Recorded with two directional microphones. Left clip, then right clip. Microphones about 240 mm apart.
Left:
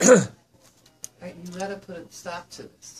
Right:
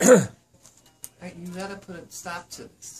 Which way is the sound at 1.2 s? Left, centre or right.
Right.